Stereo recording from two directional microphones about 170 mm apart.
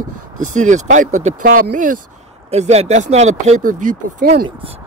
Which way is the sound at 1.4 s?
55° right (ahead or behind).